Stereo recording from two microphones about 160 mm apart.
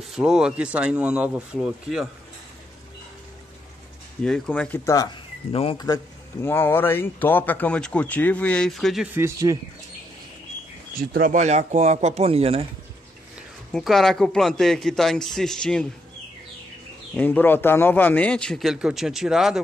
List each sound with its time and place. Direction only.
0.1 s a man's voice: 5° right (ahead or behind)
4.2 s speech: 5° left (ahead or behind); by 5.8 s 35° left (ahead or behind)
6.4 s speech: 15° left (ahead or behind)
9.1 s speech: 20° right (ahead or behind)
11.0 s speech: 65° right (ahead or behind)
11.3 s speech: 45° right (ahead or behind)
13.7 s a man's voice: centre (ahead or behind)
17.1 s a man's voice: 10° left (ahead or behind)